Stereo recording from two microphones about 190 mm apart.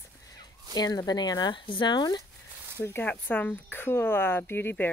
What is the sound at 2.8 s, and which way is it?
Speech, 10° left (ahead or behind).